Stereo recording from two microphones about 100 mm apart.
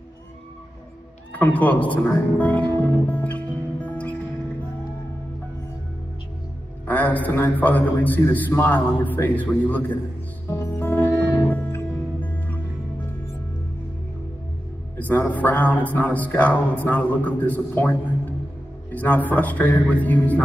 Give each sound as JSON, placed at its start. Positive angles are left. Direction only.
{"t": 1.3, "sound": "speech", "side_deg": 15}
{"t": 6.9, "sound": "a man's voice", "side_deg": 15}
{"t": 10.5, "sound": "music", "side_deg": 20}
{"t": 15.0, "sound": "a man's voice", "side_deg": 15}